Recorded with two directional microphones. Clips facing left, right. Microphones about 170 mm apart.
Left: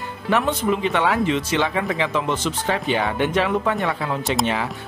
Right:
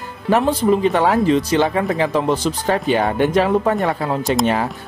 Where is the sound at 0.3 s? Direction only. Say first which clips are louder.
Right 5 dB; 35° right (ahead or behind).